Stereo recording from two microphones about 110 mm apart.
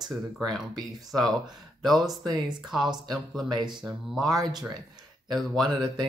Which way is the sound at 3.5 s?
40° right (ahead or behind).